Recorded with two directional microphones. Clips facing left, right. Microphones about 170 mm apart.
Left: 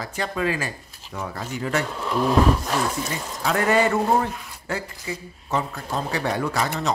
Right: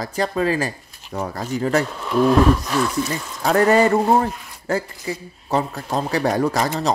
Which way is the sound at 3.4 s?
40° right (ahead or behind).